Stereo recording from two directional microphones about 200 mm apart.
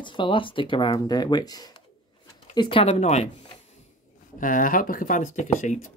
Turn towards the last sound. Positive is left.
turn(degrees=40)  # may be behind; listen again after turning